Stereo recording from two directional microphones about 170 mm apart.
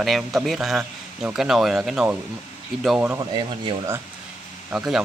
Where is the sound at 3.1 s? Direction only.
30° right (ahead or behind).